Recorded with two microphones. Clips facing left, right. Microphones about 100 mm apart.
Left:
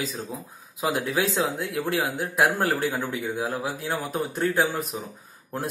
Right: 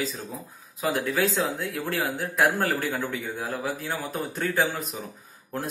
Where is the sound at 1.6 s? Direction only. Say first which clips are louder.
Left 2 dB; 10° left (ahead or behind).